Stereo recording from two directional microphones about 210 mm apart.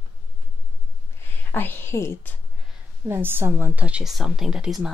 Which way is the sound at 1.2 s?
10° left (ahead or behind).